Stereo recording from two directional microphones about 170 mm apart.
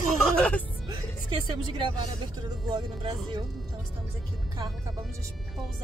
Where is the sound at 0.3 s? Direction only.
5° left (ahead or behind).